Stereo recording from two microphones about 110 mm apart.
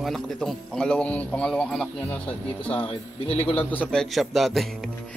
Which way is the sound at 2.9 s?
60° left (ahead or behind).